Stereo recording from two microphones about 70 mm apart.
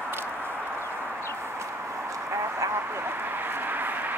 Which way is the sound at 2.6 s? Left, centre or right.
Right.